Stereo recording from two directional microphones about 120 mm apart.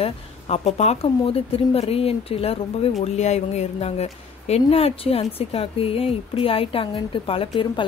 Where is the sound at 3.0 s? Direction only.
70° left (ahead or behind).